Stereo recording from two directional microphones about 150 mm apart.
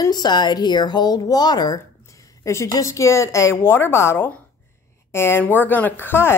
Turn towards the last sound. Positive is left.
turn(degrees=15)  # may be behind; listen again after turning